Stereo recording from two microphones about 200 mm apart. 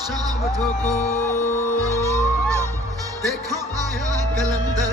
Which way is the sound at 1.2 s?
10° left (ahead or behind).